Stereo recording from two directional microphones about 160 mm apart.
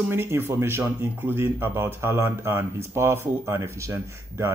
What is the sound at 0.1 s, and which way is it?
Speech, 15° right (ahead or behind).